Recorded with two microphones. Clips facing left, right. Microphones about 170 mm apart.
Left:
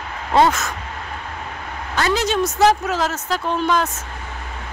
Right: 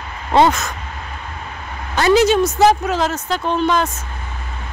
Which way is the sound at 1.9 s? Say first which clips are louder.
Right 7 dB; 20° right (ahead or behind).